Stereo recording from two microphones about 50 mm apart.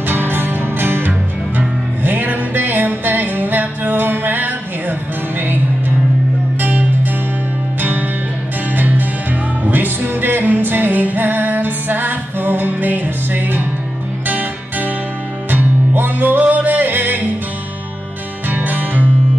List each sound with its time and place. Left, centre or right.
0.1 s music: right
6.6 s music: right
8.7 s music: right
18.5 s music: right